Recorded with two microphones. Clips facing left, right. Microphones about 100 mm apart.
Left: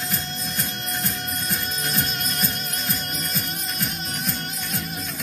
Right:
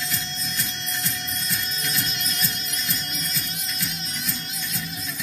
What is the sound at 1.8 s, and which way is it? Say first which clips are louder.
Music: left 3 dB; 45° left (ahead or behind).